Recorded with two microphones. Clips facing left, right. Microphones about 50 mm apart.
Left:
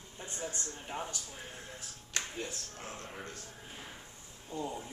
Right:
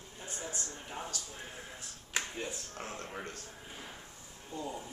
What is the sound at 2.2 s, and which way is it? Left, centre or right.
Speech, centre.